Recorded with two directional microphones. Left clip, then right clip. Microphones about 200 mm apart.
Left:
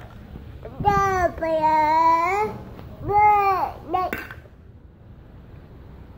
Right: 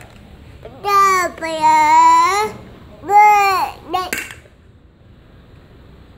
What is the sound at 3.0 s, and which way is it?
Babbling, 30° right (ahead or behind).